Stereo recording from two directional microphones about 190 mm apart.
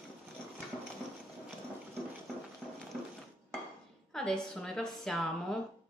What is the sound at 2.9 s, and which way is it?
Dishes, centre (ahead or behind).